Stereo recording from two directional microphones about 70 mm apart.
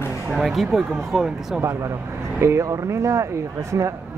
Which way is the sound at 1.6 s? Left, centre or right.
Right.